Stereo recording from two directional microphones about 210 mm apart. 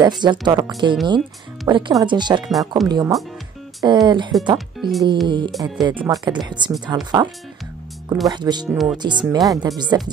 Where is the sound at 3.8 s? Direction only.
15° right (ahead or behind).